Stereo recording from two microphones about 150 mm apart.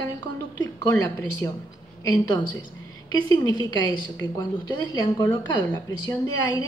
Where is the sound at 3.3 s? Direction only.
25° left (ahead or behind).